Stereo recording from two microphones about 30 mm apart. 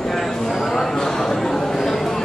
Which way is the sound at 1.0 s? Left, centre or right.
Centre.